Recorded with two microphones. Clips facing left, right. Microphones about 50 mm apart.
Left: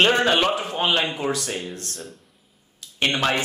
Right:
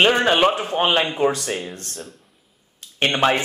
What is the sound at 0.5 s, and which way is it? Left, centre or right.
Speech, right.